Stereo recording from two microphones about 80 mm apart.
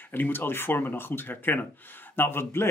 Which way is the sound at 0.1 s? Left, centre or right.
Left.